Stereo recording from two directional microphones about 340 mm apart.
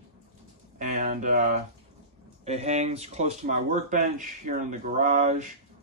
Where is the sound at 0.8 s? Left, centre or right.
Right.